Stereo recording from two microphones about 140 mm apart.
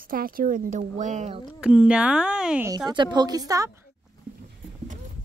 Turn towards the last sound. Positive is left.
turn(degrees=-25)  # may be behind; listen again after turning